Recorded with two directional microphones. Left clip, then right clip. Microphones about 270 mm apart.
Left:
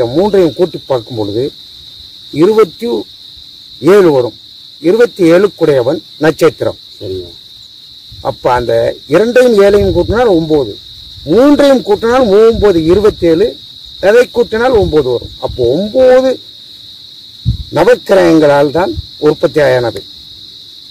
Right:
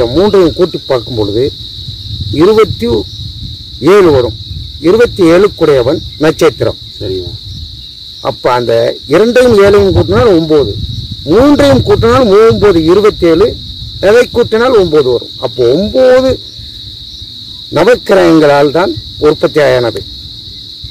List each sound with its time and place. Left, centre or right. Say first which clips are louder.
0.0 s speech: right 2 dB; centre
8.2 s speech: right 1 dB; centre
17.7 s speech: right 1 dB; centre